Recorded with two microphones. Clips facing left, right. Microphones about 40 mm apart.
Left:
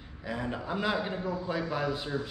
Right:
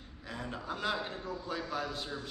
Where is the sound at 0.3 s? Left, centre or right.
Centre.